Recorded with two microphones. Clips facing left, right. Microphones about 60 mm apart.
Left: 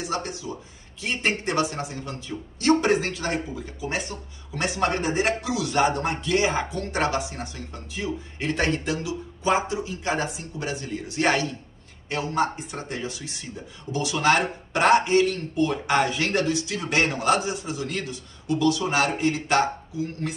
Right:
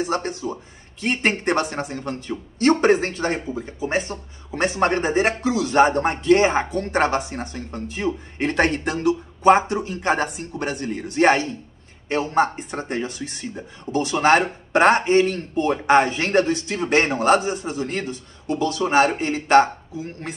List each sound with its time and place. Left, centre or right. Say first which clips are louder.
0.0 s speech: right 5 dB; right